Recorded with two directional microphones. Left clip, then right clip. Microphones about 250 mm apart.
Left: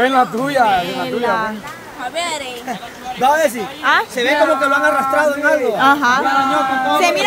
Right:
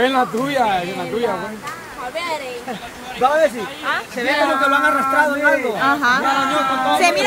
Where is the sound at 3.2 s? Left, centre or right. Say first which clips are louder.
Left 1 dB; left.